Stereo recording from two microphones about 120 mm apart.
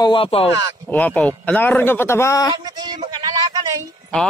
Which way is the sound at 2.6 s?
35° right (ahead or behind).